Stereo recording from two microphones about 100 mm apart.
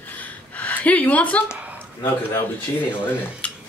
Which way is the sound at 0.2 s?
15° left (ahead or behind).